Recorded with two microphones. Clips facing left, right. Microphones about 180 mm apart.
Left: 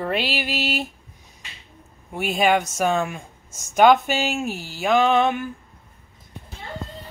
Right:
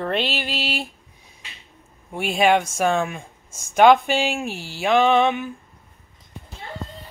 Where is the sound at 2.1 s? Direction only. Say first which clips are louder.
Right 1 dB; centre (ahead or behind).